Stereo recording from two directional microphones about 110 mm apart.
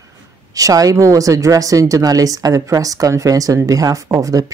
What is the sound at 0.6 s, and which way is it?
Speech, 30° right (ahead or behind).